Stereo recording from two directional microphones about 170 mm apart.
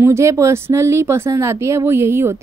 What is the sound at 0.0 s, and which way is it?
A woman's voice, 15° right (ahead or behind).